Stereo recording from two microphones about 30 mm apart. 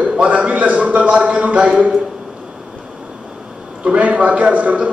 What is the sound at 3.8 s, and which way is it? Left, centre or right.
A woman's voice, right.